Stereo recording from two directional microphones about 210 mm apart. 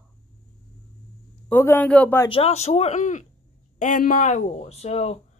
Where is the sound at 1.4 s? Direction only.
10° left (ahead or behind).